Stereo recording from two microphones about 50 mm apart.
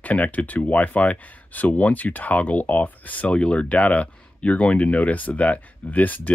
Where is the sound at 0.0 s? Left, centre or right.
Left.